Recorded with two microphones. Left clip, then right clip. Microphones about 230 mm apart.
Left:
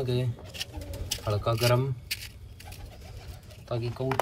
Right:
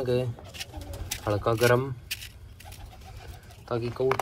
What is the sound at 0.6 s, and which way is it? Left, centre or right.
Bird, centre.